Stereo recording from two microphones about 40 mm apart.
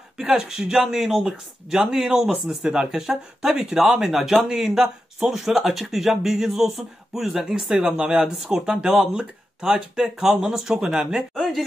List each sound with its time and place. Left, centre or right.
0.2 s speech: centre
11.3 s speech: centre